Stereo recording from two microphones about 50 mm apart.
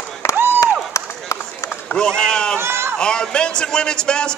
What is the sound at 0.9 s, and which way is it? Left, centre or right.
Run, left.